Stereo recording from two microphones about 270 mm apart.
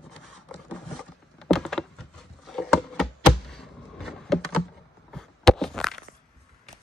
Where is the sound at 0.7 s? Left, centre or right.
Centre.